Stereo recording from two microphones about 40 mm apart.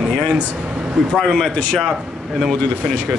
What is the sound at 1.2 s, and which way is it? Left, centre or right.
Speech, centre.